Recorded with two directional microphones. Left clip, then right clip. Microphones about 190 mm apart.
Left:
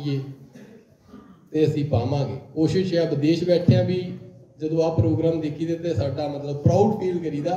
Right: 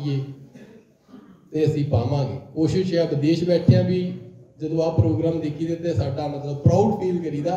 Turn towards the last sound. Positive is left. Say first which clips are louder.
# right 1 dB
turn(degrees=25)  # may be behind; listen again after turning